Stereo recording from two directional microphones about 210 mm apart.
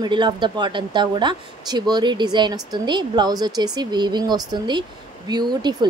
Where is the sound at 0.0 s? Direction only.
20° right (ahead or behind).